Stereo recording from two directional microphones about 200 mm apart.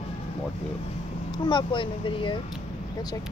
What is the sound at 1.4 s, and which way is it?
Speech, 25° left (ahead or behind).